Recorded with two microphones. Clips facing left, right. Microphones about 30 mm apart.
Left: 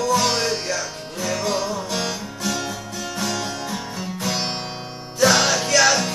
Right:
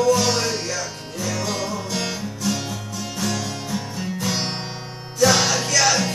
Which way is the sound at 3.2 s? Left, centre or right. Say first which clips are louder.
Even; centre.